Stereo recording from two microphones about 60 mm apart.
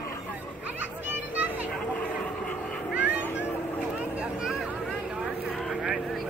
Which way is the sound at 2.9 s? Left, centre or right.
Right.